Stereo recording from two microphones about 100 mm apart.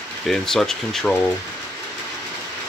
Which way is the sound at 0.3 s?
5° left (ahead or behind).